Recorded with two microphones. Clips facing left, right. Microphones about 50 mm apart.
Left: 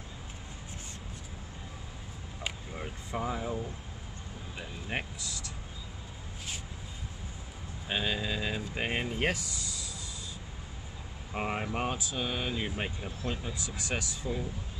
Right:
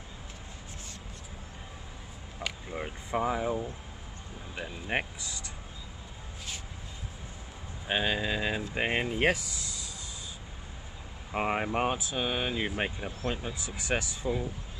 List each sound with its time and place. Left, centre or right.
2.7 s a sound: centre
4.6 s speech: right
7.9 s speech: right
11.3 s speech: right